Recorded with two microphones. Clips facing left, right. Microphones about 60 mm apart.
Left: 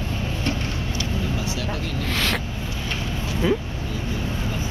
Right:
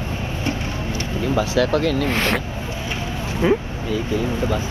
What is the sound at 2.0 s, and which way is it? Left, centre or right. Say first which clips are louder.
Speech: right 4 dB; right.